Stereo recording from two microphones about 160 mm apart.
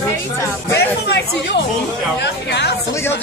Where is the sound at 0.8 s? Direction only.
90° left.